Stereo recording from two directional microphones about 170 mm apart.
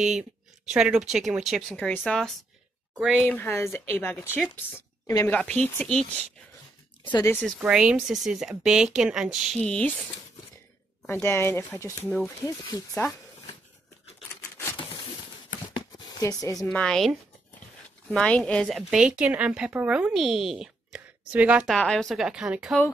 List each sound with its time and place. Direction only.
0.0 s a woman's voice: 5° right (ahead or behind)
3.3 s a woman's voice: 15° left (ahead or behind)
5.3 s speech: 5° left (ahead or behind)
7.2 s speech: 10° left (ahead or behind)
7.6 s a woman's voice: 5° right (ahead or behind)
11.2 s speech: 15° left (ahead or behind)
15.7 s a sound: 20° left (ahead or behind)
16.6 s a woman's voice: 5° left (ahead or behind)
21.7 s a woman's voice: 5° left (ahead or behind)